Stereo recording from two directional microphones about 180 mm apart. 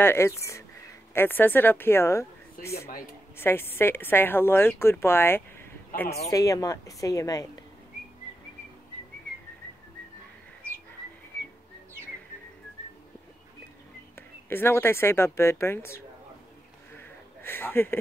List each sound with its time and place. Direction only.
0.0 s speech: 15° left (ahead or behind)
3.3 s a woman's voice: 15° left (ahead or behind)
14.5 s speech: 10° left (ahead or behind)
16.9 s a sound: 10° left (ahead or behind)